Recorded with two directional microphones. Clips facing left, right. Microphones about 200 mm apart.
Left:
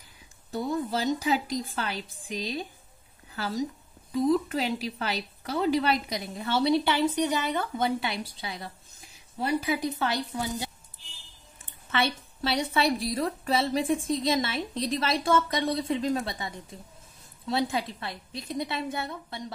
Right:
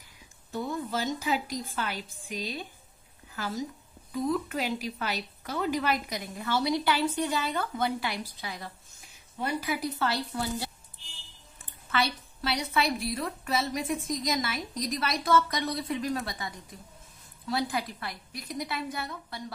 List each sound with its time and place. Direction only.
0.5 s a woman's voice: 35° left (ahead or behind)